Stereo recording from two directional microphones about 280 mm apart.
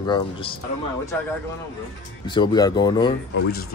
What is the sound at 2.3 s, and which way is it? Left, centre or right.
Speech, centre.